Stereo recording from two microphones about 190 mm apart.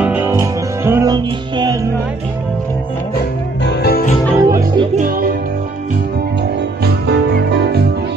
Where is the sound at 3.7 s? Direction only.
55° left (ahead or behind).